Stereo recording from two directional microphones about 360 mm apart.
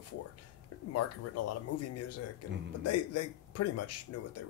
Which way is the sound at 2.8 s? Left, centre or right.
Left.